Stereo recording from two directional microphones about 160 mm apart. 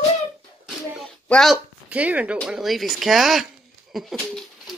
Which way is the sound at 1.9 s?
10° right (ahead or behind).